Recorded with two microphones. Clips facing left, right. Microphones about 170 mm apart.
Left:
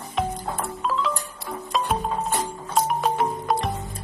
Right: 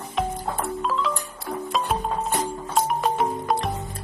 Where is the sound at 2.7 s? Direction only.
Centre (ahead or behind).